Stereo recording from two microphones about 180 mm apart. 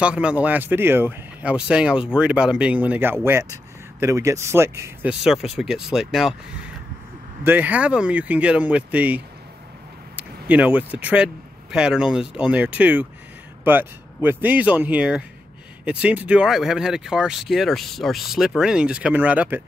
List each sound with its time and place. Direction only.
0.0 s speech: 5° right (ahead or behind)
5.2 s speech: centre (ahead or behind)
7.4 s speech: 10° right (ahead or behind)